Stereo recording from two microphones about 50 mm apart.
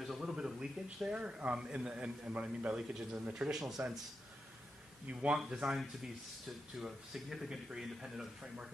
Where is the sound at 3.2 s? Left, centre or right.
Right.